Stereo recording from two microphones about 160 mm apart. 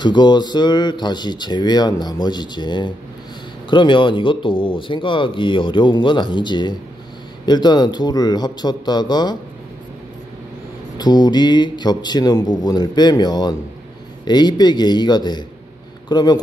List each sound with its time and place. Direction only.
0.0 s speech: 30° left (ahead or behind)
11.0 s speech: 25° left (ahead or behind)